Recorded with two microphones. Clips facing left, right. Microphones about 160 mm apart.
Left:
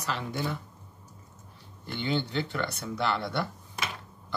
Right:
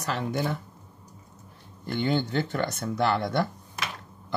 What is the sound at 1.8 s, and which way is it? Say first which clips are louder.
Speech: right 4 dB; 45° right (ahead or behind).